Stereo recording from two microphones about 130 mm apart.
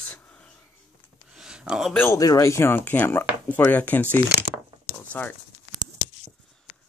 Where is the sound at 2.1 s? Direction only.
25° left (ahead or behind).